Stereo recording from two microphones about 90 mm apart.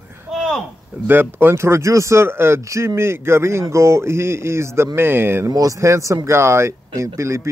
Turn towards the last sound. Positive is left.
turn(degrees=-30)  # may be behind; listen again after turning